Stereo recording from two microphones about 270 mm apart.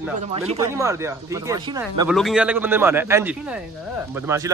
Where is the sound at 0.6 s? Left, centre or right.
Centre.